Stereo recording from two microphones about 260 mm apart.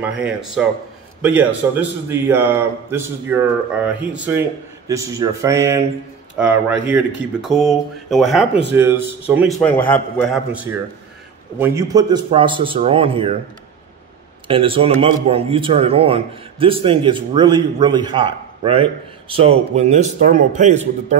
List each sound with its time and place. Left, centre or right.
0.6 s a man's voice: centre
9.6 s a man's voice: centre; by 13.4 s right
14.5 s a man's voice: centre